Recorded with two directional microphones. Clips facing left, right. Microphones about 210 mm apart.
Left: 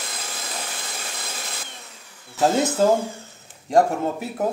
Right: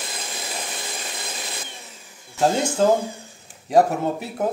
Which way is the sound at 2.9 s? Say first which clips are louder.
Even; 15° right (ahead or behind).